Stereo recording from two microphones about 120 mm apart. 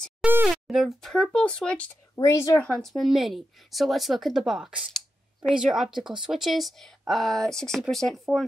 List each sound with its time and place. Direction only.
0.2 s a sound: 15° right (ahead or behind)
0.7 s a woman's voice: centre (ahead or behind)
2.1 s a woman's voice: 25° left (ahead or behind)
2.6 s a woman's voice: 5° left (ahead or behind)